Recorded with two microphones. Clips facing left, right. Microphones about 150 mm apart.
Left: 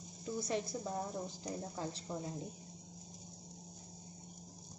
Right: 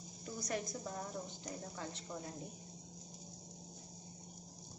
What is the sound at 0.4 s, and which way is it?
A woman's voice, 25° left (ahead or behind).